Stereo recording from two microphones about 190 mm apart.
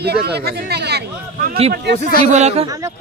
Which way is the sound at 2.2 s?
35° right (ahead or behind).